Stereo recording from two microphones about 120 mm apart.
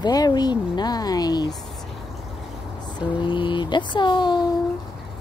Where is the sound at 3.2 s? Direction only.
40° left (ahead or behind).